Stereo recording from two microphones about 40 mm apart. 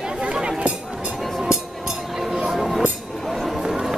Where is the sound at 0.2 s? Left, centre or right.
Right.